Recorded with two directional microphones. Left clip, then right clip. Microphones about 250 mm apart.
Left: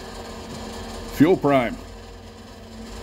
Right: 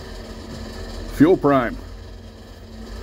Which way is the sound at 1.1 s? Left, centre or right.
Left.